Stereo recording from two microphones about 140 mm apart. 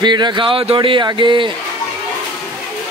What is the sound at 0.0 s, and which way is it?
Speech, 30° right (ahead or behind).